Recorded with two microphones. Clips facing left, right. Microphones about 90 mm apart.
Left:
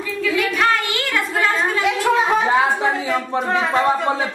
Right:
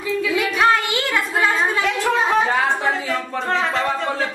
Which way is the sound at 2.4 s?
20° left (ahead or behind).